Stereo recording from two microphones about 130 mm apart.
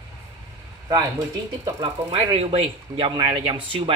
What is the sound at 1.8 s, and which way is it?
Speech, 45° right (ahead or behind).